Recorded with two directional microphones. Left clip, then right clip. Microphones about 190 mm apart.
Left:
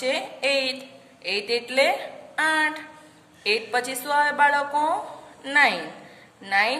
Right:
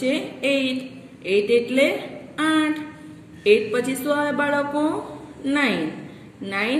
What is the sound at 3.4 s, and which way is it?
A woman's voice, 45° left (ahead or behind).